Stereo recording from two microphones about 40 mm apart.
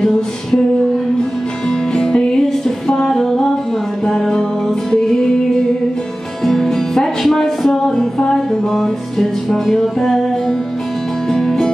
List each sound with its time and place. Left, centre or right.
1.7 s music: centre
11.2 s music: centre